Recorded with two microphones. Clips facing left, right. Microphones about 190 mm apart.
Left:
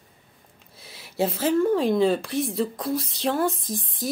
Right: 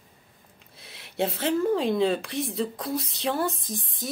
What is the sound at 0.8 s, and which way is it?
Speech, centre (ahead or behind).